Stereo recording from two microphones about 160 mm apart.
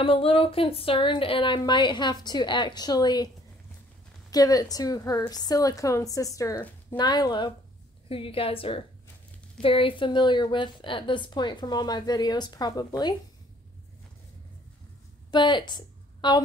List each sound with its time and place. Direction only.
0.0 s a woman's voice: 35° left (ahead or behind)
4.3 s a woman's voice: 25° left (ahead or behind)
15.3 s a woman's voice: 30° left (ahead or behind)